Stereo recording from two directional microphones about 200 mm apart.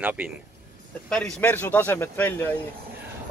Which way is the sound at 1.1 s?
5° left (ahead or behind).